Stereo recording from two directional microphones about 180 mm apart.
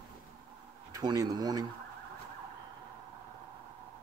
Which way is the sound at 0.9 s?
20° right (ahead or behind).